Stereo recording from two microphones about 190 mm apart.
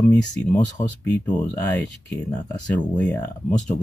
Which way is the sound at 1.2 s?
10° left (ahead or behind).